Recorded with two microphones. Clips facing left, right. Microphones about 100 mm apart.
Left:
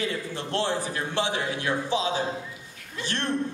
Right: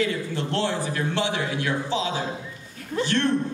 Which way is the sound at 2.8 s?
40° right (ahead or behind).